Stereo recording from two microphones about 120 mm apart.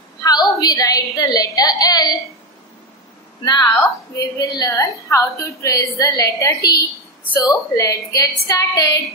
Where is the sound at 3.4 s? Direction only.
35° left (ahead or behind).